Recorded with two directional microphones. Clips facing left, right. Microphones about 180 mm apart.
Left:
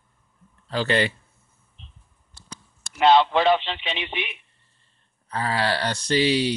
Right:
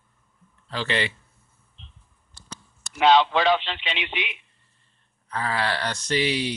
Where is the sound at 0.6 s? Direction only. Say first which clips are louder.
Left 5 dB; 40° left (ahead or behind).